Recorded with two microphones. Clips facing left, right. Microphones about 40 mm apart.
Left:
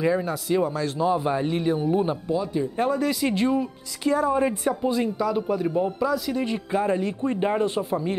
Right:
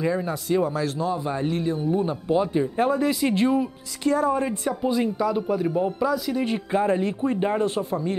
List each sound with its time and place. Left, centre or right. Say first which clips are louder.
0.2 s speech: even; centre
1.0 s a man's voice: left 3 dB; left
2.2 s speech: right 3 dB; right
2.8 s speech: right 1 dB; centre
4.1 s a woman's voice: left 1 dB; centre
4.8 s speech: right 3 dB; centre
6.4 s speech: right 1 dB; centre
7.2 s speech: even; centre